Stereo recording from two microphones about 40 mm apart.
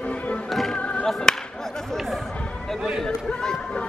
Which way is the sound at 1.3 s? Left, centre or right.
Left.